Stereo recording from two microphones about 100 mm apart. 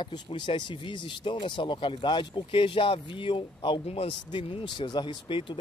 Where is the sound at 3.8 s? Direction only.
75° left (ahead or behind).